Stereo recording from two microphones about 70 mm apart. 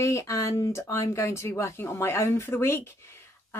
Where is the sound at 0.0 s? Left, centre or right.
Left.